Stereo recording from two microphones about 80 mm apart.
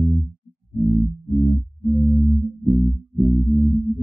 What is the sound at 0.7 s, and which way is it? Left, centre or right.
Music, right.